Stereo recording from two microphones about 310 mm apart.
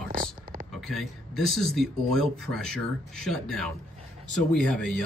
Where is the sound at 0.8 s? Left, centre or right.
Centre.